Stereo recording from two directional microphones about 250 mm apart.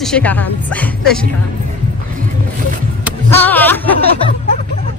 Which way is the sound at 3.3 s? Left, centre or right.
Centre.